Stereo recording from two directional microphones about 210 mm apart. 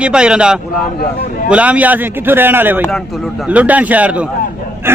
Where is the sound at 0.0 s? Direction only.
5° right (ahead or behind).